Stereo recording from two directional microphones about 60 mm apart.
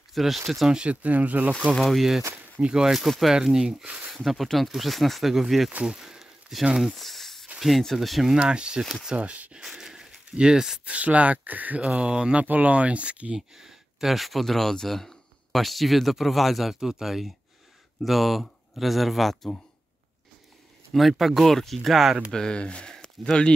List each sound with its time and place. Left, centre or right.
0.1 s speech: centre
0.8 s speech: right
1.8 s speech: centre
3.8 s speech: right
4.1 s speech: centre
5.9 s a sound: centre
7.6 s speech: centre
8.4 s speech: centre
9.6 s a sound: centre
10.9 s speech: right
13.6 s speech: centre
20.9 s speech: centre
22.3 s speech: centre